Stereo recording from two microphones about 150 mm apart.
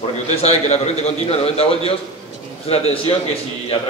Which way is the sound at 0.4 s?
45° left (ahead or behind).